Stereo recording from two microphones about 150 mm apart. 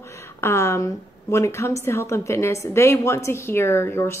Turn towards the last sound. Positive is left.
turn(degrees=15)  # may be behind; listen again after turning